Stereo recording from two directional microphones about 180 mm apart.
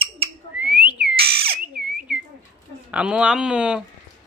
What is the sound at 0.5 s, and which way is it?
Whistling, 10° right (ahead or behind).